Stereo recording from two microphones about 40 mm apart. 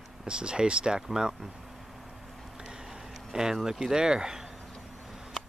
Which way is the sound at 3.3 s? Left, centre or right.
Centre.